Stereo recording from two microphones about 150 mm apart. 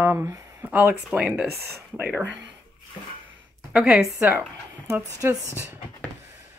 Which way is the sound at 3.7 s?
5° right (ahead or behind).